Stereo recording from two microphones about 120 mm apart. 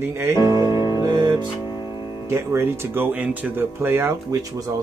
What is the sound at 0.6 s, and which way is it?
Music, 35° left (ahead or behind).